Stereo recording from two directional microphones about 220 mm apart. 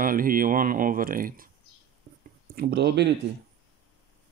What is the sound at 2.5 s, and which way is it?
Speech, 50° right (ahead or behind).